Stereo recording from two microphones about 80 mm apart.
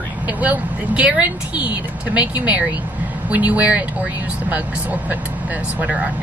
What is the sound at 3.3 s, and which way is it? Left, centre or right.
Speech, centre.